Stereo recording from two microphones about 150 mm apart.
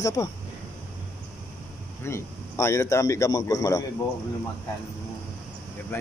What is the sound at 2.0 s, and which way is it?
Speech, 20° left (ahead or behind).